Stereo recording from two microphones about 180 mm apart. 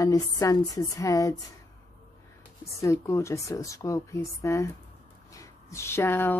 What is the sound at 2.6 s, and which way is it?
A woman's voice, 15° left (ahead or behind).